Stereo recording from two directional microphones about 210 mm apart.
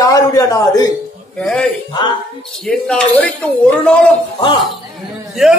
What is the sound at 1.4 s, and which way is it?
A man's voice, 5° left (ahead or behind).